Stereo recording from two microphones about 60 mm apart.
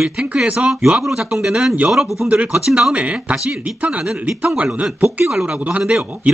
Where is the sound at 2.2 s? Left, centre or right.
Right.